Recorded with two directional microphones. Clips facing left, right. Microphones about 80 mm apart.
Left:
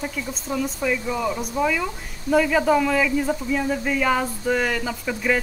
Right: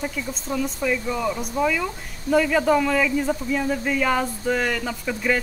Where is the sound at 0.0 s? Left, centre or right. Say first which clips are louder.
Even; centre.